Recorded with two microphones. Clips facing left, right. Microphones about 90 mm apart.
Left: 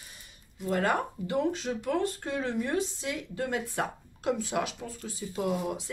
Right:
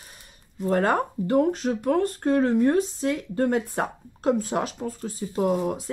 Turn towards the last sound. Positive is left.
turn(degrees=-40)  # may be behind; listen again after turning